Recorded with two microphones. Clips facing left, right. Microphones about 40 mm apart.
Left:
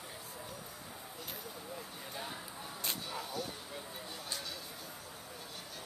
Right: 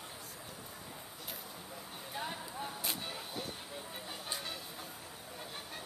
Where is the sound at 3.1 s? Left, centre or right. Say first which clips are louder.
Left 2 dB; right.